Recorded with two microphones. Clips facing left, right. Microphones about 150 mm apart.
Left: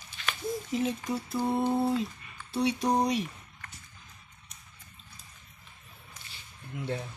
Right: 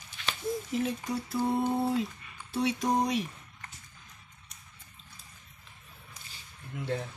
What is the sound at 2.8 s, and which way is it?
Speech, 30° left (ahead or behind).